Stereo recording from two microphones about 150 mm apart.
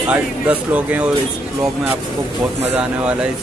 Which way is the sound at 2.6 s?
10° right (ahead or behind).